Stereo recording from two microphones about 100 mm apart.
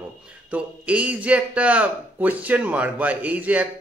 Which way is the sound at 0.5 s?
15° right (ahead or behind).